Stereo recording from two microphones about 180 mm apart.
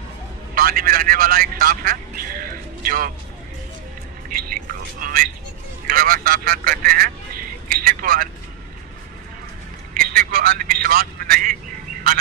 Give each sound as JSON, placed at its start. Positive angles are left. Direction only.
{"t": 0.6, "sound": "speech", "side_deg": -55}
{"t": 5.0, "sound": "speech", "side_deg": -50}
{"t": 9.9, "sound": "speech", "side_deg": -50}